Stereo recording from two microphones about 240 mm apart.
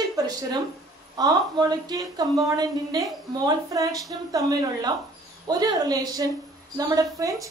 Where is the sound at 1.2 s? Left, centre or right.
Centre.